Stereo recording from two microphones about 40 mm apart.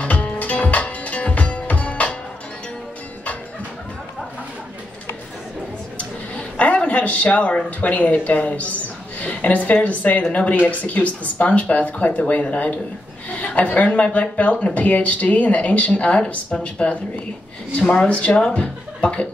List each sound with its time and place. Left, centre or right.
0.0 s music: left
5.9 s a sound: left
7.8 s a woman's voice: left